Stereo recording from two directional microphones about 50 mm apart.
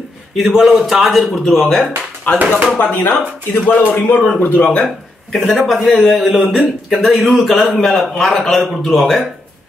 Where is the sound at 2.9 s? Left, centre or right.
Left.